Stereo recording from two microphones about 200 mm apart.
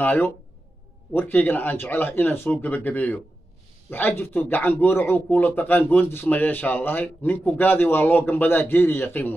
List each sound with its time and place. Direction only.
0.0 s speech: 10° left (ahead or behind)